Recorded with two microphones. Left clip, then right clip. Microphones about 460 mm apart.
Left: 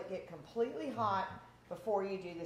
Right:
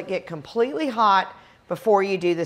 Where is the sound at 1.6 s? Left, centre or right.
Right.